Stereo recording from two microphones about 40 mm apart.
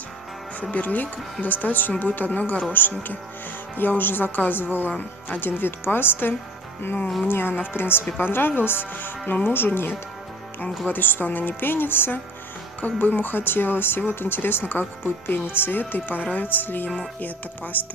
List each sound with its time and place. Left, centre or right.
0.6 s a woman's voice: left
8.2 s speech: left
10.9 s speech: left